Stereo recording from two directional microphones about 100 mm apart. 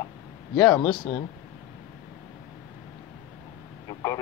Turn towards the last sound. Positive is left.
turn(degrees=30)  # may be behind; listen again after turning